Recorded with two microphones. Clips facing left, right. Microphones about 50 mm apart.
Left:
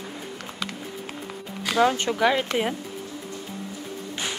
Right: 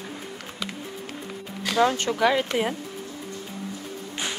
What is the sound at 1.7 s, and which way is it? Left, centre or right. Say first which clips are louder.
Speech: left 1 dB; centre.